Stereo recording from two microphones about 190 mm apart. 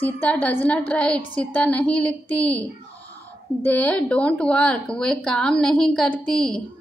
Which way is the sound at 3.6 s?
5° left (ahead or behind).